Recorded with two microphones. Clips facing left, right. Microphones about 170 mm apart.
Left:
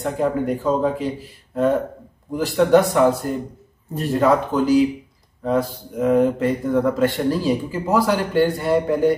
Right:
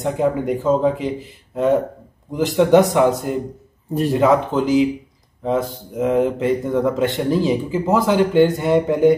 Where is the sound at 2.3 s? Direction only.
20° right (ahead or behind).